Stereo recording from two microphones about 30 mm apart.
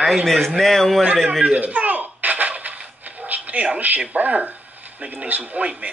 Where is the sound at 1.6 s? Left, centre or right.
Right.